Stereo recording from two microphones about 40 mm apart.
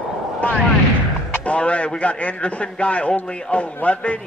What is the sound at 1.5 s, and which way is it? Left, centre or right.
A man's voice, left.